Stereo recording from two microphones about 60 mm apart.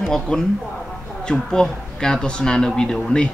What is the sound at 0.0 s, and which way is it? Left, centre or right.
Speech, centre.